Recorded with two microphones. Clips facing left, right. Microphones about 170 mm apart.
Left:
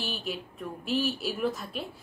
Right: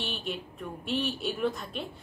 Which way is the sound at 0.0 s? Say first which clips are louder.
Even; 5° left (ahead or behind).